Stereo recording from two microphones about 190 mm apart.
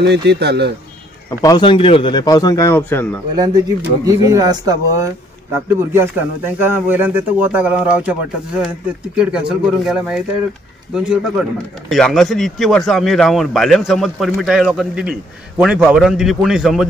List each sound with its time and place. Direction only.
0.0 s a man's voice: 60° right (ahead or behind)
1.4 s speech: 20° left (ahead or behind)
3.3 s speech: 20° right (ahead or behind); by 16.9 s centre (ahead or behind)